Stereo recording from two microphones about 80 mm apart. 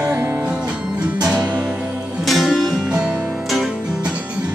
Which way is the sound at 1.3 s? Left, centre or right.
Right.